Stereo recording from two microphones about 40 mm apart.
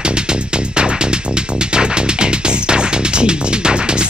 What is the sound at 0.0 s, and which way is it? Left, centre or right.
Music, right.